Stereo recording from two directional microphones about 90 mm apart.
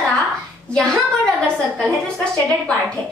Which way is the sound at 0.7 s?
5° left (ahead or behind).